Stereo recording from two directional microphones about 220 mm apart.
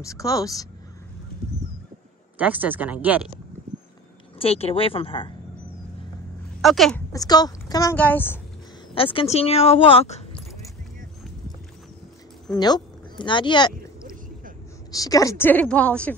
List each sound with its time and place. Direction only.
0.0 s a woman's voice: 15° left (ahead or behind)
2.3 s speech: 5° right (ahead or behind)
4.4 s a woman's voice: 25° left (ahead or behind)
6.6 s speech: centre (ahead or behind)
7.1 s a woman's voice: 15° left (ahead or behind)
7.9 s a woman's voice: 5° left (ahead or behind)
8.9 s a woman's voice: 25° left (ahead or behind)
12.5 s speech: 20° left (ahead or behind)
14.9 s a woman's voice: 15° left (ahead or behind)